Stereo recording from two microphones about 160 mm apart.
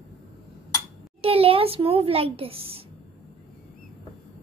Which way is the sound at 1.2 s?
35° right (ahead or behind).